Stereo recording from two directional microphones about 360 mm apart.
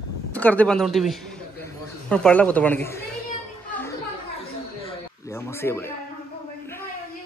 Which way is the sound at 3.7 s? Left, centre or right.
Centre.